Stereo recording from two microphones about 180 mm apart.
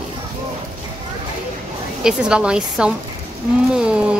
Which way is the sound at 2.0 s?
5° right (ahead or behind).